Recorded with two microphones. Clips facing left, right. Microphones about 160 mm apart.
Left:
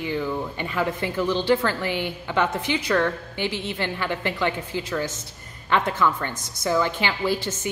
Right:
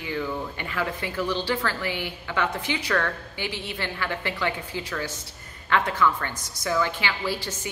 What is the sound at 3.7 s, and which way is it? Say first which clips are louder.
A woman's voice: left 3 dB; 20° left (ahead or behind).